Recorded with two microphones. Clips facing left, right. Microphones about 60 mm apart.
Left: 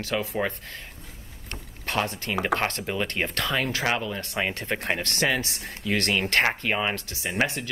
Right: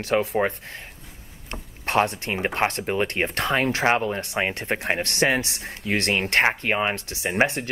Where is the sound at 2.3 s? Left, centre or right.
Right.